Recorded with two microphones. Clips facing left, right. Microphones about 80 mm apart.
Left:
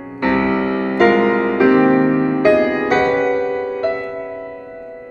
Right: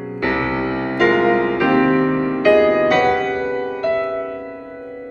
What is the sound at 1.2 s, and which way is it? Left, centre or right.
Music, left.